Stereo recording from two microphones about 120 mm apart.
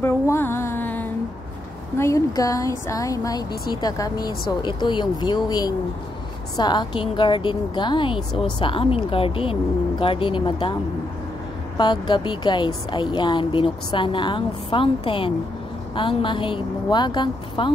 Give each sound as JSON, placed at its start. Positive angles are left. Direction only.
{"t": 0.0, "sound": "music", "side_deg": 20}
{"t": 2.0, "sound": "speech", "side_deg": 25}